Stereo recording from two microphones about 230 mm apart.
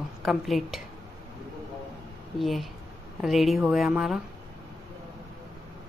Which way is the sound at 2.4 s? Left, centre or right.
Centre.